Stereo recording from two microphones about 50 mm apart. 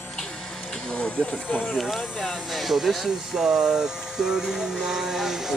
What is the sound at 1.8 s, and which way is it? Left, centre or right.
Speech, centre.